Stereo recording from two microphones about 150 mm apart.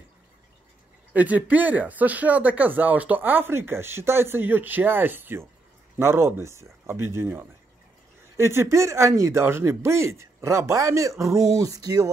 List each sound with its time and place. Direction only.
1.1 s speech: 10° right (ahead or behind)